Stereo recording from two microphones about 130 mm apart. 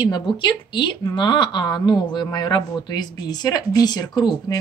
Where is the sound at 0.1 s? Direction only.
35° left (ahead or behind).